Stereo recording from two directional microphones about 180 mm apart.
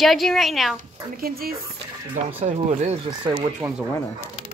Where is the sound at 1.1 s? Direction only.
55° right (ahead or behind).